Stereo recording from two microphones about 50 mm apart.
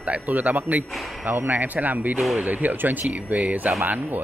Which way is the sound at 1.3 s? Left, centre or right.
Right.